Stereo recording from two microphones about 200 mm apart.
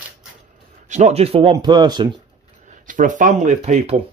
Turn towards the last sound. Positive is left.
turn(degrees=-35)  # may be behind; listen again after turning